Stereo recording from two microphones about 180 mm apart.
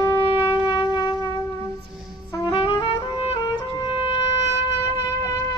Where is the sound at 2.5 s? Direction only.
30° left (ahead or behind).